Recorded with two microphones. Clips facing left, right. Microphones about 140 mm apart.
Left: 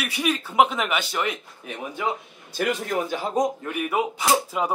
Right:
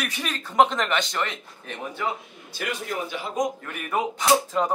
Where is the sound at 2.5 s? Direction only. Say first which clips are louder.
Left 5 dB; 40° left (ahead or behind).